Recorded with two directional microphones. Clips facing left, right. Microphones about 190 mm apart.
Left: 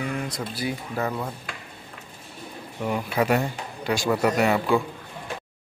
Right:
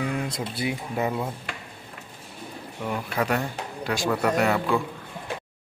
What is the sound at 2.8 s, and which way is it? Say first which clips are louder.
A man's voice: left 3 dB; 10° left (ahead or behind).